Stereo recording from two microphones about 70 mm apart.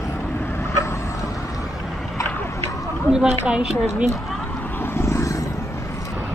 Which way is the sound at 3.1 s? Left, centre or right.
Centre.